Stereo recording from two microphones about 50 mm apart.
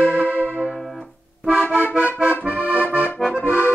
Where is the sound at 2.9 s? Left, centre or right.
Left.